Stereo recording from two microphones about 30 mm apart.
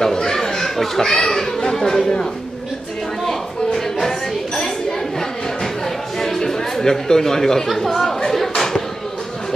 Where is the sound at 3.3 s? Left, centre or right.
Centre.